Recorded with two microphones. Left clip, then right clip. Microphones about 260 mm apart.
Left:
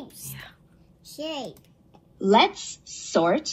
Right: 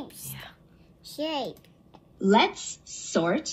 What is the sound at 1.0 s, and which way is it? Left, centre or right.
Speech, right.